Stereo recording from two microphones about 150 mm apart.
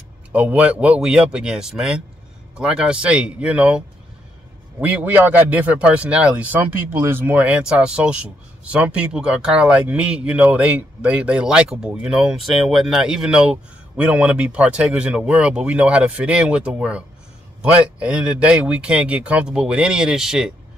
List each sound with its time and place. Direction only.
0.3 s speech: 10° right (ahead or behind)